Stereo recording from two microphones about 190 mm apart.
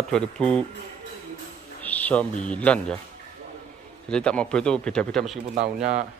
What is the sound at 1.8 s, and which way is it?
Music, 10° left (ahead or behind).